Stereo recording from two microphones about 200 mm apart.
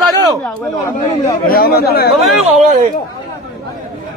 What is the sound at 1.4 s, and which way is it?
Speech, 50° left (ahead or behind).